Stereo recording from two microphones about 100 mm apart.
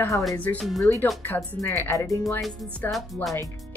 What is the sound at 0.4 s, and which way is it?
Speech, 15° left (ahead or behind).